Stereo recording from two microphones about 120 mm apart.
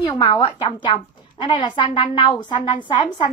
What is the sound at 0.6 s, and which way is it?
A woman's voice, 40° left (ahead or behind).